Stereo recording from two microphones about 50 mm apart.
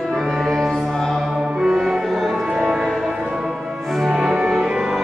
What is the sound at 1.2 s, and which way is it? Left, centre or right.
Music, centre.